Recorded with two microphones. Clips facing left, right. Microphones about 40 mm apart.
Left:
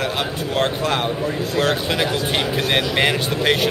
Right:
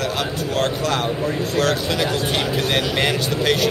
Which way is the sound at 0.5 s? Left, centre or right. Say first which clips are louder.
Left 1 dB; left.